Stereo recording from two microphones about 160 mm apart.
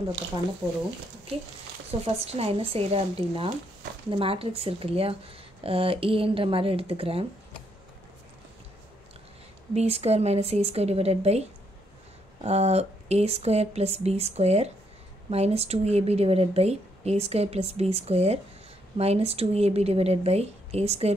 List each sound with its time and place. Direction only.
1.9 s speech: 40° right (ahead or behind)
9.8 s speech: 40° right (ahead or behind)
12.4 s speech: 40° right (ahead or behind)